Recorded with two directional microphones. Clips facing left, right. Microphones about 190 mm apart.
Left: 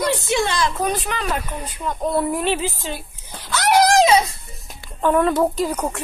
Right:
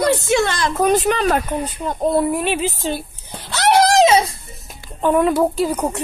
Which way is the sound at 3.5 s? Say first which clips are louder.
Right 1 dB; 30° right (ahead or behind).